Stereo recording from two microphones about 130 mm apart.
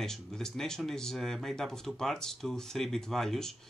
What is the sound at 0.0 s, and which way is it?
Speech, 5° left (ahead or behind).